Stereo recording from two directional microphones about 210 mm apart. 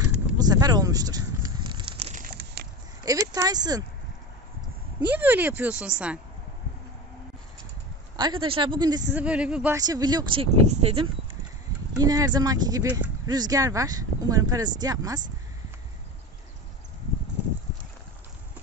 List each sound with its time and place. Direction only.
0.4 s crumpling: 20° right (ahead or behind)
3.1 s speech: 15° right (ahead or behind)
5.1 s speech: 10° right (ahead or behind)
8.2 s speech: 25° right (ahead or behind)
9.1 s speech: 5° right (ahead or behind)
9.8 s speech: 20° right (ahead or behind)
12.0 s speech: 20° right (ahead or behind)